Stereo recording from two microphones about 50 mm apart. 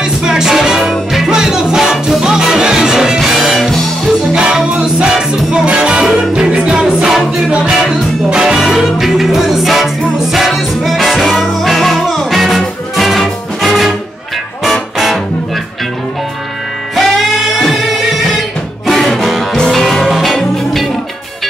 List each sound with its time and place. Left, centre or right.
0.0 s music: centre
4.3 s music: centre
16.9 s music: centre